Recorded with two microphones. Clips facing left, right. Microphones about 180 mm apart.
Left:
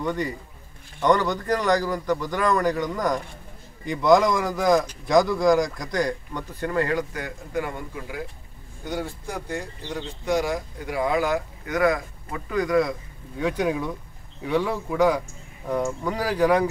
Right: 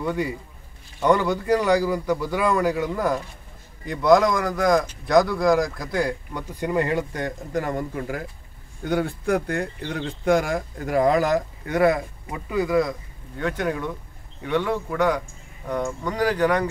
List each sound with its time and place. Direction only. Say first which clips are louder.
0.0 s a man's voice: right 1 dB; 10° right (ahead or behind); by 8.3 s 50° right (ahead or behind)
8.8 s speech: right 7 dB; 60° right (ahead or behind); by 12.0 s 30° right (ahead or behind)
12.3 s speech: even; 10° right (ahead or behind)
13.4 s speech: left 1 dB; 10° left (ahead or behind)